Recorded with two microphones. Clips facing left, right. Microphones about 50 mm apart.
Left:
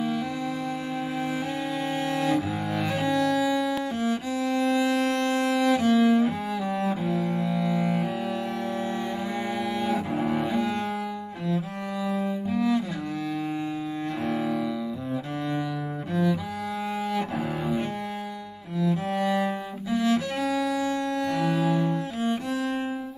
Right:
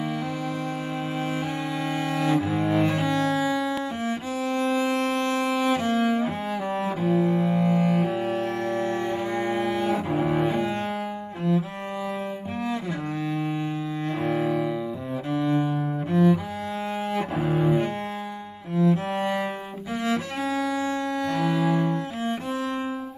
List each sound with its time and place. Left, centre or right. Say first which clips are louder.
2.2 s cello: right 3 dB; right
5.4 s music: even; right
5.7 s cello: left 5 dB; right
6.8 s cello: right 6 dB; centre; by 8.1 s right
9.6 s cello: right 1 dB; right
9.9 s cello: right 2 dB; centre
10.4 s cello: right 2 dB; right
12.5 s cello: left 5 dB; right
15.6 s cello: right 4 dB; right
17.4 s cello: right 5 dB; centre
18.8 s cello: right 3 dB; right